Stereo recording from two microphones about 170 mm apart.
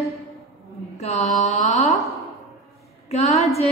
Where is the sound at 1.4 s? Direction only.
45° left (ahead or behind).